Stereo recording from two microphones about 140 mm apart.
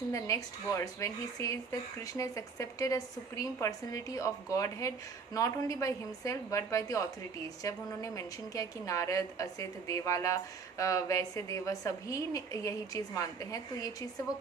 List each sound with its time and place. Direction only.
0.1 s speech: 20° left (ahead or behind)